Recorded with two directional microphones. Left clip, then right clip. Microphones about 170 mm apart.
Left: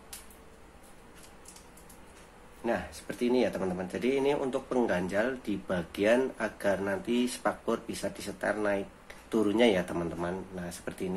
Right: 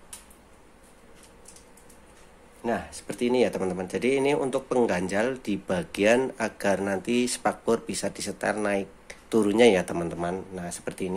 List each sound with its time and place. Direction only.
2.6 s speech: 45° right (ahead or behind)